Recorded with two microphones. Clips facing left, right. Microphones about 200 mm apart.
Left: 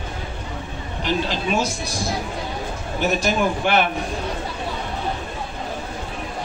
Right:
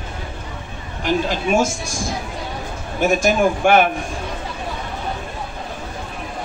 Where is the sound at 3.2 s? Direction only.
50° right (ahead or behind).